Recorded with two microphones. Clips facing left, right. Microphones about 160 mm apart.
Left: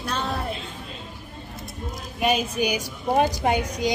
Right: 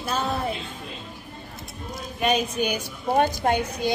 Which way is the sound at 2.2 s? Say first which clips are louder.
Left 1 dB; 5° left (ahead or behind).